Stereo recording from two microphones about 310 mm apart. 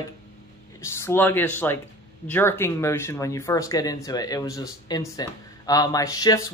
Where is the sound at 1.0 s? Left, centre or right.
Centre.